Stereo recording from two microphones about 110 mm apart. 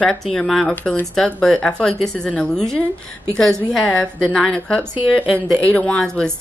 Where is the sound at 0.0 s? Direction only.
10° left (ahead or behind).